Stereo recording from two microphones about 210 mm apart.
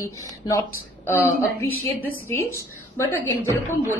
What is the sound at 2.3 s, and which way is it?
Speech, 10° left (ahead or behind).